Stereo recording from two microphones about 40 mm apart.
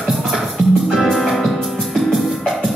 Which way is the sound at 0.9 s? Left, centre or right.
Centre.